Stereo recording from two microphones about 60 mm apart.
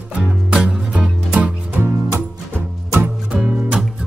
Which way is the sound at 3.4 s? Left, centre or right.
Centre.